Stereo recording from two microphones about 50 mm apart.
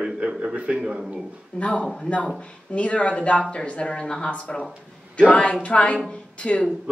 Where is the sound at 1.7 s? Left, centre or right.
Left.